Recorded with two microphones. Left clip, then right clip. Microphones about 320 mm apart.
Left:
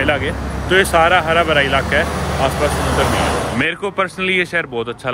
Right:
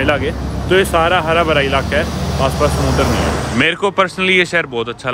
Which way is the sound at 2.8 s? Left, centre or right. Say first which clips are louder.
Even; left.